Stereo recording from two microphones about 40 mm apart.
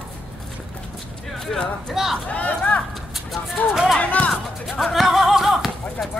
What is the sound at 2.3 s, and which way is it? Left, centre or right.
Speech, left.